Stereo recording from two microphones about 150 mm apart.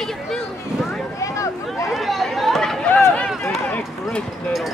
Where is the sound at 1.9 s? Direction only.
Centre (ahead or behind).